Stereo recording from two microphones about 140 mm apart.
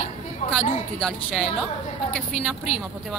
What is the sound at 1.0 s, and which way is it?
Speech, 5° left (ahead or behind).